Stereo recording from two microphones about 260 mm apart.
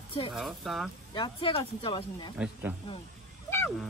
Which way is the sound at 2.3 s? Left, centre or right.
Centre.